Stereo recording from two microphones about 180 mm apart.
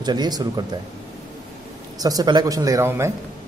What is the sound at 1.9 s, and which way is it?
A man's voice, 20° right (ahead or behind).